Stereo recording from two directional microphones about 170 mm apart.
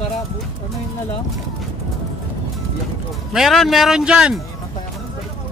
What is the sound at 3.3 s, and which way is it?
A man's voice, centre (ahead or behind).